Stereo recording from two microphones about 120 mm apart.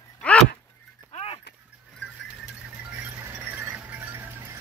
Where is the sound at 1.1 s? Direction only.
55° left (ahead or behind).